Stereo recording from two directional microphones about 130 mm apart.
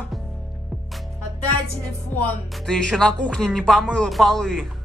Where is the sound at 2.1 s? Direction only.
15° left (ahead or behind).